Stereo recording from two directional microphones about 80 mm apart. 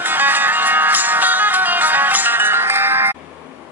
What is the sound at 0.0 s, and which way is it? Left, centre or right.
Music, right.